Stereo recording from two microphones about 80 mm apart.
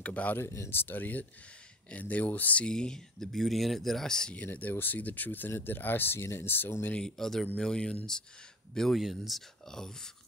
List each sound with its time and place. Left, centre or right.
0.0 s speech: centre
0.4 s speech: left; by 4.4 s centre
4.4 s speech: left
7.0 s speech: centre